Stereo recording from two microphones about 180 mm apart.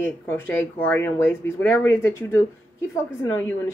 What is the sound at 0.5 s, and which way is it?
Speech, 10° left (ahead or behind).